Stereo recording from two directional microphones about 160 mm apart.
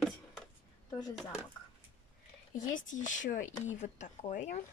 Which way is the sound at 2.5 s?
55° left (ahead or behind).